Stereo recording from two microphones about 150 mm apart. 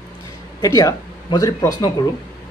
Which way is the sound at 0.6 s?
25° left (ahead or behind).